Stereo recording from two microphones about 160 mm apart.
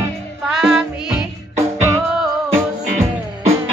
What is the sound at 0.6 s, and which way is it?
Music, centre (ahead or behind).